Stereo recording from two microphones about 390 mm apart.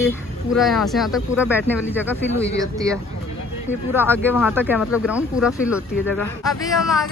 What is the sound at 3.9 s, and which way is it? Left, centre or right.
Speech, centre.